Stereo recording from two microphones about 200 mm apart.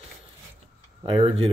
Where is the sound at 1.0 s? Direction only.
25° right (ahead or behind).